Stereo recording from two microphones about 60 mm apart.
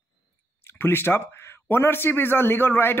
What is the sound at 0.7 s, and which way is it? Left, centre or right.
Speech, left.